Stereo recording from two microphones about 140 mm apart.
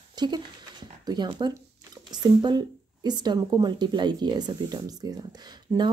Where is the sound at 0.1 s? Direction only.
30° right (ahead or behind).